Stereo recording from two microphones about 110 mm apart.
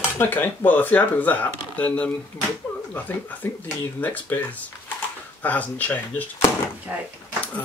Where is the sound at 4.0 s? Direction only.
15° left (ahead or behind).